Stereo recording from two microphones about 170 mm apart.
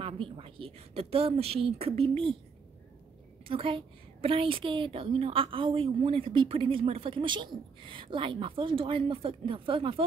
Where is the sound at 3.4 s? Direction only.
30° right (ahead or behind).